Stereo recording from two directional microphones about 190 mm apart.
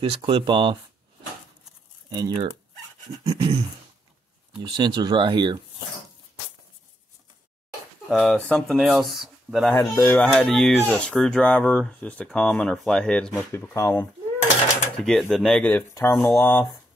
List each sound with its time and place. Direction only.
0.0 s speech: 25° right (ahead or behind)
2.0 s speech: 20° right (ahead or behind)
3.3 s a sound: 30° right (ahead or behind)
4.6 s speech: 25° right (ahead or behind)
8.1 s speech: centre (ahead or behind)
9.8 s speech: 10° left (ahead or behind)
15.0 s speech: 5° left (ahead or behind)